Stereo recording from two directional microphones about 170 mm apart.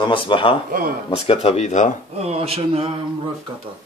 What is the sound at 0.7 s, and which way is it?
Speech, 55° right (ahead or behind).